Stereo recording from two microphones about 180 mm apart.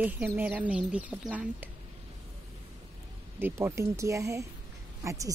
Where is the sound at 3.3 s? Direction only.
15° right (ahead or behind).